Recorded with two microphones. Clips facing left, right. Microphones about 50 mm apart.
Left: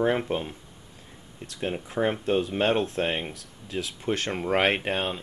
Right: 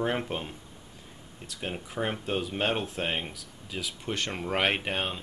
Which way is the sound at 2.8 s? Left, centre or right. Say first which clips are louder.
Left 6 dB; left.